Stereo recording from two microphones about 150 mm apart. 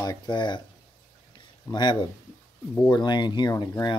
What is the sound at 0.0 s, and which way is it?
Speech, 30° left (ahead or behind).